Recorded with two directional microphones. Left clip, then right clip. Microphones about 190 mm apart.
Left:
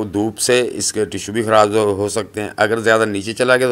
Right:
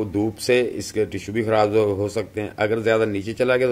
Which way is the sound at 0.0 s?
30° left (ahead or behind).